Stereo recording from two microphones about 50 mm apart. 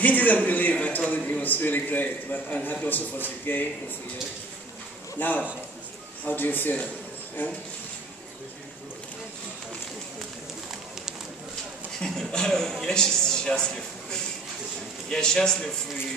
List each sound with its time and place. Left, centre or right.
0.0 s a man's voice: left
5.2 s a man's voice: left
12.0 s a man's voice: centre